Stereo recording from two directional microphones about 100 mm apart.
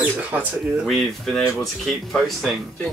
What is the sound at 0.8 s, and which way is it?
Speech, centre (ahead or behind).